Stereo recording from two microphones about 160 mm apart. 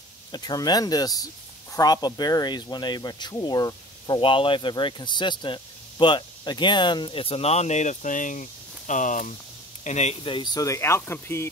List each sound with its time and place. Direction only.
0.3 s speech: 25° left (ahead or behind); by 10.1 s 45° left (ahead or behind)
10.2 s speech: 30° left (ahead or behind)